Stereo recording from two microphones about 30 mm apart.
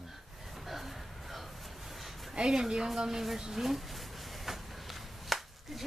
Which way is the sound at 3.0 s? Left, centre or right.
Centre.